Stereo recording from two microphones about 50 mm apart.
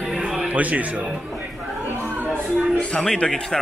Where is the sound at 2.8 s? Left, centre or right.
Left.